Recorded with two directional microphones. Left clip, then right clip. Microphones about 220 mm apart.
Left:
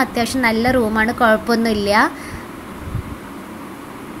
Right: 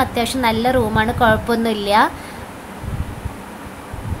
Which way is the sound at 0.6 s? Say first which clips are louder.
Even; 5° left (ahead or behind).